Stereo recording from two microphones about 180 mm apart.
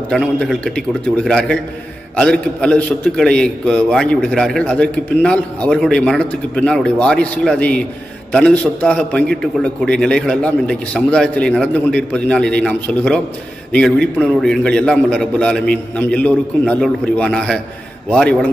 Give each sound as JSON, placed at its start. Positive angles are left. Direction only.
{"t": 0.1, "sound": "a man's voice", "side_deg": 0}